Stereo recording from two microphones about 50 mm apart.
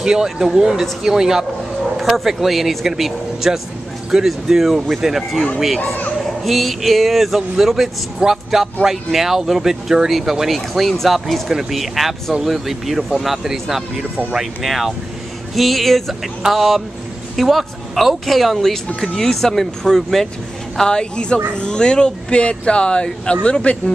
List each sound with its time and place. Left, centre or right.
0.0 s speech: centre; by 23.8 s left